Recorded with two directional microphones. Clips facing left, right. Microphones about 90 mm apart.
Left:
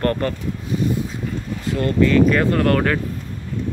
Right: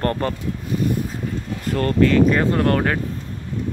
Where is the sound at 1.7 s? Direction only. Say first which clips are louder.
Even; 45° right (ahead or behind).